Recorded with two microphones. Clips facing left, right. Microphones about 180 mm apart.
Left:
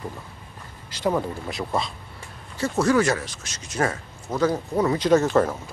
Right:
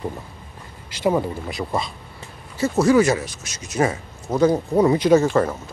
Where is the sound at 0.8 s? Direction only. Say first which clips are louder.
Right 4 dB; 10° right (ahead or behind).